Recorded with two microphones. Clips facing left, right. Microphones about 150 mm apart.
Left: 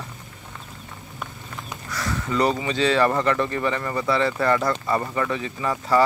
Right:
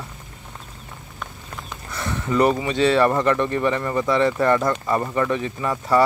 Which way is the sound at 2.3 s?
10° right (ahead or behind).